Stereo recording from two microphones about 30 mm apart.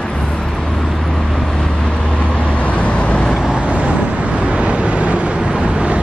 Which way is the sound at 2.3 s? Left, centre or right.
Left.